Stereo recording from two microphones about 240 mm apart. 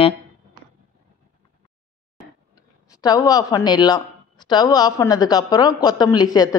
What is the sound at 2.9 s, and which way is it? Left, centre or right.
A woman's voice, centre.